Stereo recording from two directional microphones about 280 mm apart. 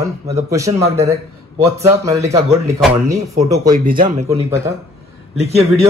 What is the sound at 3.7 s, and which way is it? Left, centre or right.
Speech, right.